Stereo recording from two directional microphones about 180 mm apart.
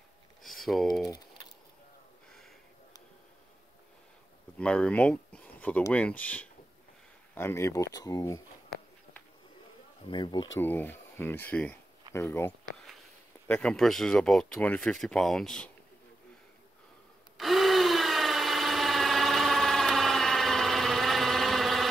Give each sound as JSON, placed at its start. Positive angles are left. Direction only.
{"t": 0.4, "sound": "a sound", "side_deg": 0}
{"t": 1.0, "sound": "a sound", "side_deg": 25}
{"t": 4.6, "sound": "speech", "side_deg": 5}
{"t": 10.0, "sound": "speech", "side_deg": 25}
{"t": 10.6, "sound": "speech", "side_deg": 10}
{"t": 17.4, "sound": "tools", "side_deg": 0}